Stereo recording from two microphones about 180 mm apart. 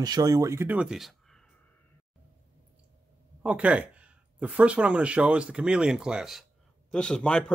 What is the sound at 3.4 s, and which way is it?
Speech, 5° right (ahead or behind).